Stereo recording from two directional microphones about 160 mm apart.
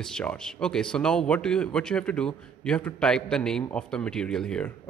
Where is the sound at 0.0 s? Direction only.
5° left (ahead or behind).